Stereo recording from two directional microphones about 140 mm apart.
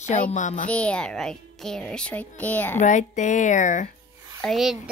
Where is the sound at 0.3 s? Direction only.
60° left (ahead or behind).